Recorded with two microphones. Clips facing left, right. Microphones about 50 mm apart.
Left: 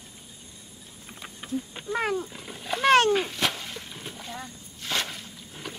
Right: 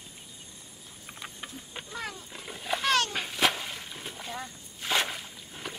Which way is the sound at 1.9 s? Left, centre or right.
Left.